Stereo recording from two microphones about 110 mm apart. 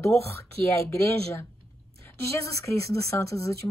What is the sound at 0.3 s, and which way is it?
Speech, 25° left (ahead or behind).